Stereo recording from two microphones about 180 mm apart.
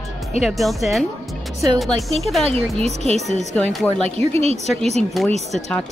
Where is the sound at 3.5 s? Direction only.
5° left (ahead or behind).